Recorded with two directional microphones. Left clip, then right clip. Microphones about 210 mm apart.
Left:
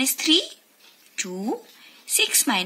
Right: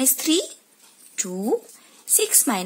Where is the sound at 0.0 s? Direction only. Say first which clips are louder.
Left 2 dB; 50° right (ahead or behind).